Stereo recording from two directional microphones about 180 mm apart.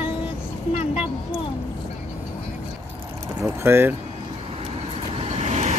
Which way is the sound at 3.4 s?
15° right (ahead or behind).